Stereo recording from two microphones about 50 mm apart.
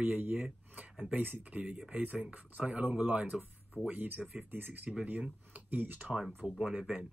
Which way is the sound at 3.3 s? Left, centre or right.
Centre.